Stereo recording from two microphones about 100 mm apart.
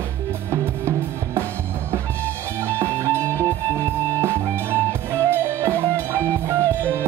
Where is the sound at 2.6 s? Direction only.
25° right (ahead or behind).